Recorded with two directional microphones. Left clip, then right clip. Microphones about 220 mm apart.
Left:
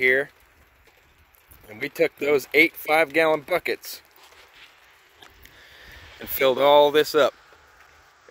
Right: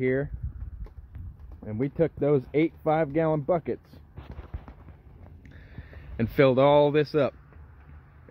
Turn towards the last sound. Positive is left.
turn(degrees=20)  # may be behind; listen again after turning